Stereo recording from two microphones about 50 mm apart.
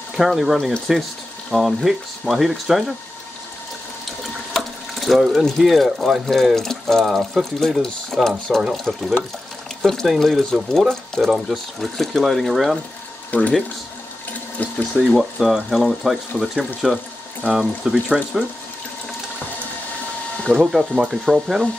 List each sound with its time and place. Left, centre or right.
0.1 s speech: centre
4.2 s water: centre
5.6 s speech: centre
7.1 s speech: centre
7.5 s speech: centre
8.5 s speech: centre
8.9 s speech: centre
11.3 s speech: centre
13.3 s speech: left
14.6 s speech: left
15.0 s speech: centre
20.5 s speech: centre
21.1 s speech: centre